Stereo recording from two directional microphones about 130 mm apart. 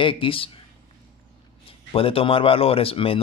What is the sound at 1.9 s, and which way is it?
Speech, 45° left (ahead or behind).